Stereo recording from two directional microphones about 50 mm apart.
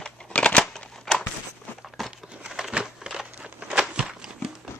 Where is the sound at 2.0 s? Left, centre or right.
Centre.